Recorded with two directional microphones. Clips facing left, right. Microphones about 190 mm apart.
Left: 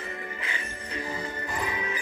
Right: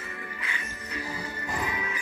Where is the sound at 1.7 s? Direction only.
30° left (ahead or behind).